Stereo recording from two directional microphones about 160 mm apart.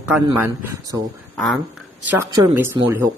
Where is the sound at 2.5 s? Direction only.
15° right (ahead or behind).